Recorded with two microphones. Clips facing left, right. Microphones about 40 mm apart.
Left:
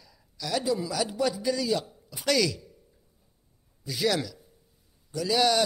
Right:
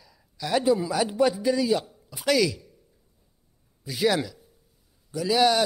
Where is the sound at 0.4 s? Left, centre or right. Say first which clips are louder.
Right 5 dB; right.